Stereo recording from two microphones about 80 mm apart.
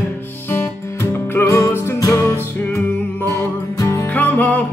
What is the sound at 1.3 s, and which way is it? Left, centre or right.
Music, left.